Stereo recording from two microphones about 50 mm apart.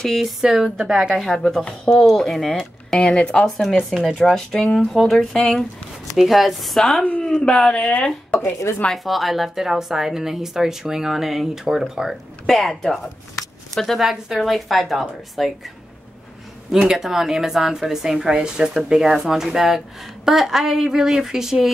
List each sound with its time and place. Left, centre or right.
0.0 s a woman's voice: centre
0.4 s a woman's voice: centre
3.6 s a woman's voice: centre
4.1 s a woman's voice: centre
7.0 s speech: left
7.4 s speech: centre
7.7 s speech: left
8.9 s a woman's voice: centre
12.4 s a woman's voice: centre
16.7 s a woman's voice: centre